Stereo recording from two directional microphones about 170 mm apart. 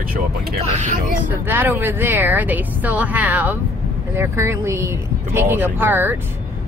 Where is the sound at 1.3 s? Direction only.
10° right (ahead or behind).